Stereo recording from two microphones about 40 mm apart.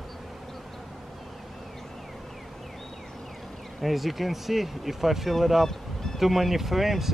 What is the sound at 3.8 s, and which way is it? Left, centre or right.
Speech, centre.